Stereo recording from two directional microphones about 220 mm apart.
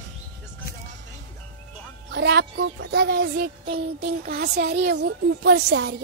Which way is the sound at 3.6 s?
25° right (ahead or behind).